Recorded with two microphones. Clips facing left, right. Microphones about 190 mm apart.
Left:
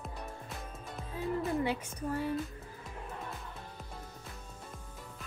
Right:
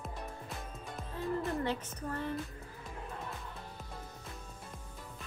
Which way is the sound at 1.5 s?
10° left (ahead or behind).